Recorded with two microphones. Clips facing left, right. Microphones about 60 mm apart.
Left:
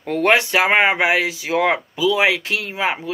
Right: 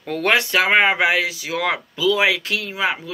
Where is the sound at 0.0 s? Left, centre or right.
Centre.